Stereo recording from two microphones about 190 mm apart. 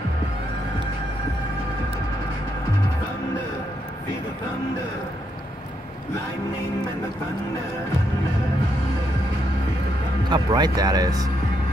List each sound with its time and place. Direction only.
10.3 s speech: 20° right (ahead or behind)